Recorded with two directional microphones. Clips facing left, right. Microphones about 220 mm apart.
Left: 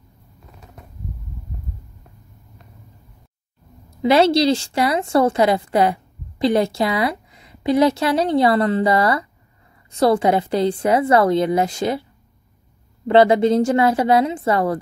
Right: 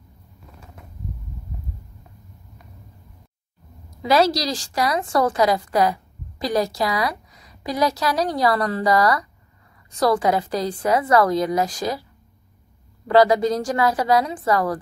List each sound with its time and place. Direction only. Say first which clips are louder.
4.0 s a woman's voice: left 4 dB; 25° left (ahead or behind)